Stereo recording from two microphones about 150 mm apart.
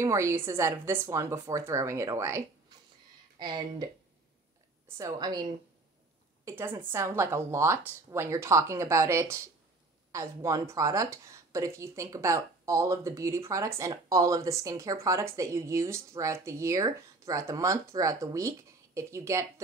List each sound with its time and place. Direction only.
0.0 s speech: 20° right (ahead or behind)
6.4 s a woman's voice: 15° right (ahead or behind)